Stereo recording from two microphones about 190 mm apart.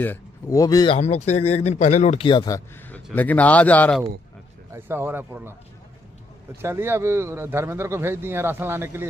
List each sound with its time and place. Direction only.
0.0 s speech: 15° left (ahead or behind)
0.9 s speech: 35° left (ahead or behind)
2.9 s speech: 10° left (ahead or behind)
4.7 s speech: 10° right (ahead or behind)
6.6 s speech: 15° right (ahead or behind)